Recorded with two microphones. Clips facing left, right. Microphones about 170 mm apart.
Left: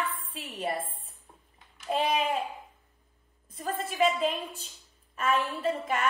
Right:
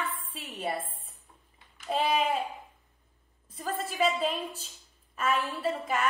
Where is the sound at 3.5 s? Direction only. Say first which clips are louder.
Left 2 dB; centre (ahead or behind).